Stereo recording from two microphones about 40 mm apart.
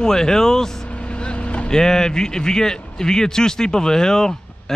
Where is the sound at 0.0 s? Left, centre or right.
Centre.